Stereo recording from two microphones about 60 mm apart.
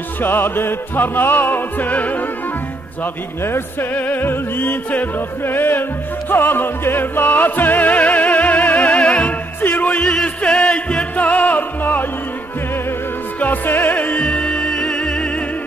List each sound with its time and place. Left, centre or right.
0.2 s music: left
3.0 s music: left
3.9 s music: left
9.6 s music: left
13.4 s music: left; by 15.3 s centre